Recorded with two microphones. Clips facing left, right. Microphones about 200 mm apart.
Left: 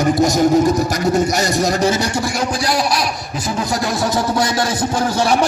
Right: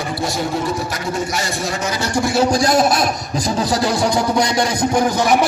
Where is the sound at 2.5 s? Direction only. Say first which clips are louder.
Right 4 dB; 45° right (ahead or behind).